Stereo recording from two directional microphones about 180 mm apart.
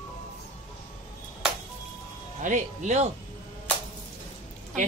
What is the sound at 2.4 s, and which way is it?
Speech, 40° right (ahead or behind).